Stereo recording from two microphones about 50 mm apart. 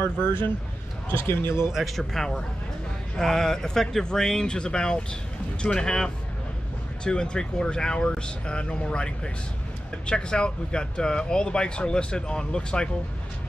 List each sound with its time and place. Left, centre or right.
0.0 s speech: left
1.7 s speech: centre